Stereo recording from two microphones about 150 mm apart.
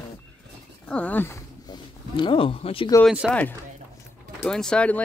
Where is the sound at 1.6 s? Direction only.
30° left (ahead or behind).